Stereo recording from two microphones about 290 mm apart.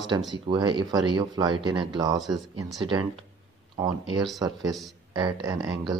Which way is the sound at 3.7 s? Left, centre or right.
Centre.